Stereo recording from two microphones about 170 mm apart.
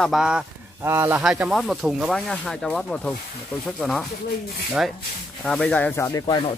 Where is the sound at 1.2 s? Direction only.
5° right (ahead or behind).